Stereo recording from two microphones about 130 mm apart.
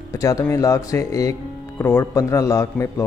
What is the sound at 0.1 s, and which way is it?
Speech, 25° left (ahead or behind).